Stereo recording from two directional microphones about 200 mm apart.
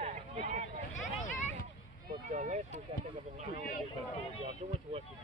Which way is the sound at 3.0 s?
25° right (ahead or behind).